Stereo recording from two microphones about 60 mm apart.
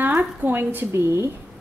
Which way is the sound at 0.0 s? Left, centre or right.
Right.